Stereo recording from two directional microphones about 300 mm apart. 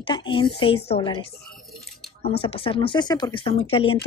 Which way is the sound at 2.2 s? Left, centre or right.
Centre.